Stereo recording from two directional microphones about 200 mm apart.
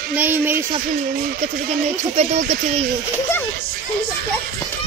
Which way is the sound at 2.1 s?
35° right (ahead or behind).